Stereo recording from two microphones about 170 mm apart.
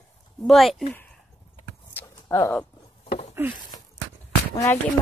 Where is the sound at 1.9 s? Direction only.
15° left (ahead or behind).